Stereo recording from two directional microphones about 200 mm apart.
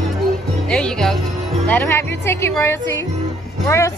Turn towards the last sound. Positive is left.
turn(degrees=15)  # may be behind; listen again after turning